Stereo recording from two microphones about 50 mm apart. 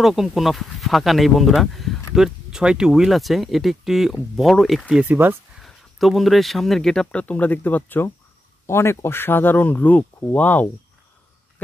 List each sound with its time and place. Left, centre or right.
0.0 s speech: centre
5.0 s speech: right
5.6 s speech: centre
7.2 s speech: left
8.6 s speech: left